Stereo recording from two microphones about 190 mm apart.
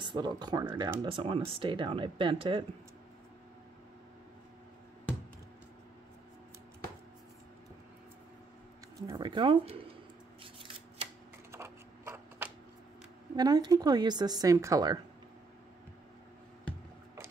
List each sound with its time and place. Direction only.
0.0 s a woman's voice: 25° right (ahead or behind)
1.0 s a woman's voice: 30° right (ahead or behind)
9.0 s a woman's voice: 25° right (ahead or behind)
11.5 s shuffling cards: 15° right (ahead or behind)
13.4 s a woman's voice: 20° right (ahead or behind)